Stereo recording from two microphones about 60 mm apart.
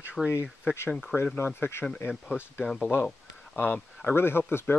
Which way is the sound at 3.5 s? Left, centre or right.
Left.